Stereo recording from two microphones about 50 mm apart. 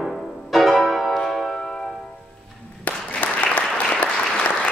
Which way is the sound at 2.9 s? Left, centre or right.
Left.